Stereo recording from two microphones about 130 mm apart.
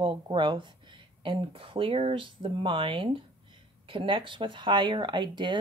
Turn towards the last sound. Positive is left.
turn(degrees=-35)  # may be behind; listen again after turning